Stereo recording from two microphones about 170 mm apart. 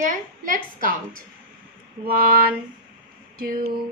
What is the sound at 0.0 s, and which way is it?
A woman's voice, 50° right (ahead or behind).